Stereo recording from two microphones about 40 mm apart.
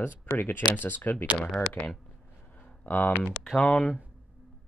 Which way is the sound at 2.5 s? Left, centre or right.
Left.